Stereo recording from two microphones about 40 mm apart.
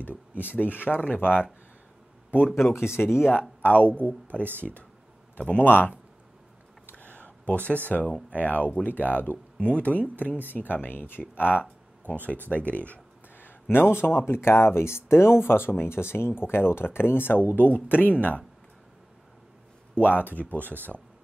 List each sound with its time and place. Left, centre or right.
0.0 s speech: left
2.7 s speech: left
3.3 s speech: left
5.5 s speech: left
7.2 s speech: left
10.2 s speech: left
12.4 s speech: left
13.4 s speech: left
17.7 s speech: left
20.0 s speech: left